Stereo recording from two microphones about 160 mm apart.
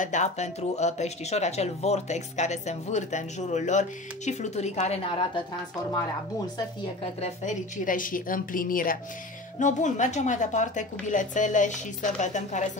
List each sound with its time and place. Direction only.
0.0 s speech: 50° left (ahead or behind)
7.2 s a woman's voice: 50° left (ahead or behind)
9.6 s speech: 50° left (ahead or behind)